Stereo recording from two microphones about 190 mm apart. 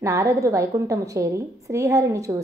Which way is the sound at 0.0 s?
15° right (ahead or behind).